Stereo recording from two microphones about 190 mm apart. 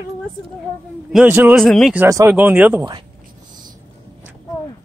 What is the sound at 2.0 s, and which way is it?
Speech, 10° right (ahead or behind).